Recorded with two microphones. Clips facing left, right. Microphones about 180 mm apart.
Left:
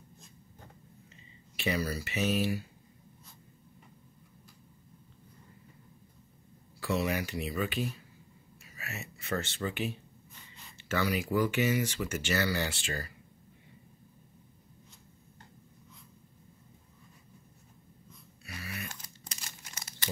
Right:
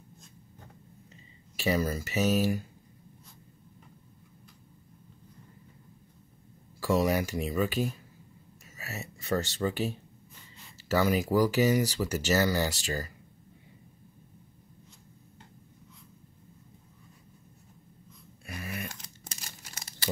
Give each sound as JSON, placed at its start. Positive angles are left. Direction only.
{"t": 1.6, "sound": "speech", "side_deg": -45}
{"t": 6.8, "sound": "speech", "side_deg": -40}
{"t": 18.4, "sound": "a sound", "side_deg": -45}